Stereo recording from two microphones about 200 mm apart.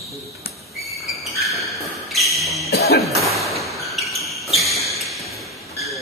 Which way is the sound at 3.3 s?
Centre (ahead or behind).